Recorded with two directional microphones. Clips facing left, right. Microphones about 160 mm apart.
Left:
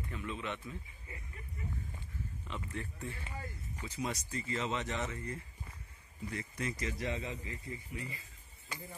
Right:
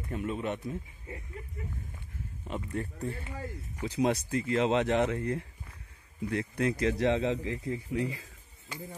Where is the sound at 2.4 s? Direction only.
40° right (ahead or behind).